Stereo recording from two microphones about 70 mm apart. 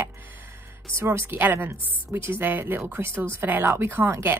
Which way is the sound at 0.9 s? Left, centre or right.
Right.